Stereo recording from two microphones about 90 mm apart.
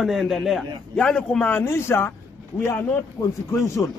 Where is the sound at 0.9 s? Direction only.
10° left (ahead or behind).